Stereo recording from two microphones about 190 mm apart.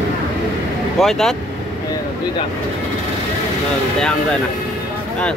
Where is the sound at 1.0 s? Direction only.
Centre (ahead or behind).